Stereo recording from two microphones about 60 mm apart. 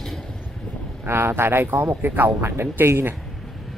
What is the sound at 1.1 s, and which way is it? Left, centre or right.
Speech, right.